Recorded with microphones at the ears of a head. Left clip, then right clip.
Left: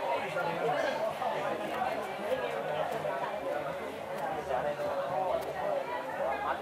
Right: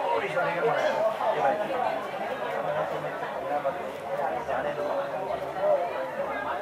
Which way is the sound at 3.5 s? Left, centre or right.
Right.